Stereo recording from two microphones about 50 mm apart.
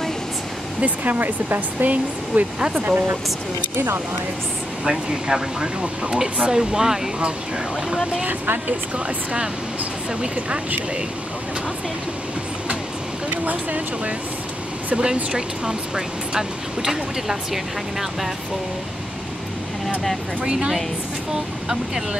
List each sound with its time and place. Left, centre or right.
0.7 s speech: right
3.7 s speech: right
4.8 s speech: centre
8.3 s speech: right
8.9 s speech: right
13.3 s speech: right
15.3 s speech: centre
20.4 s speech: centre